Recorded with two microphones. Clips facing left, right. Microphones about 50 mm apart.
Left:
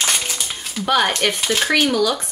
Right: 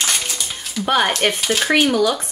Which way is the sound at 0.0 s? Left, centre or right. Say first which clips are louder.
Left 1 dB; centre.